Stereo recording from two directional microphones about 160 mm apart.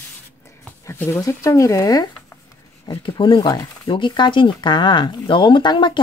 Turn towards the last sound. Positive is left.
turn(degrees=30)  # may be behind; listen again after turning